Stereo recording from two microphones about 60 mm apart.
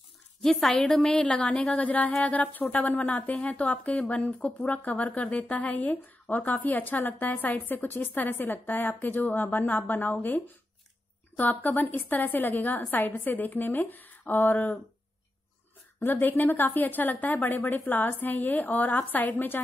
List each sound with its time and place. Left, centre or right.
0.4 s a woman's voice: centre
1.1 s a woman's voice: centre
16.0 s a woman's voice: left